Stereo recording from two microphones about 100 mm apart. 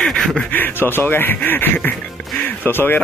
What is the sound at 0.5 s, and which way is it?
Speech, 20° left (ahead or behind).